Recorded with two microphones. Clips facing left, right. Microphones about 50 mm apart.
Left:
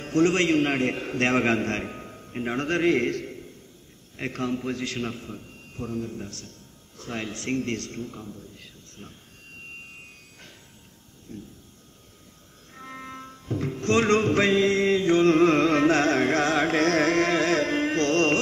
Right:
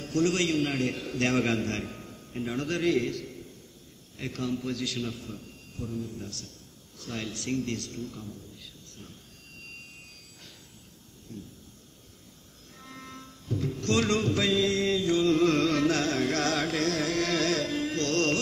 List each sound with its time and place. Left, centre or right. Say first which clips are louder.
0.0 s a man's voice: left 5 dB; left
5.9 s a man's voice: left 4 dB; left
6.2 s a man's voice: left 2 dB; left
8.5 s a sound: left 2 dB; left
11.3 s a man's voice: left 3 dB; left
12.7 s music: left 6 dB; left